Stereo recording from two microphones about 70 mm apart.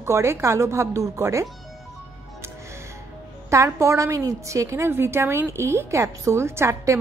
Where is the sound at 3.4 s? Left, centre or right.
Right.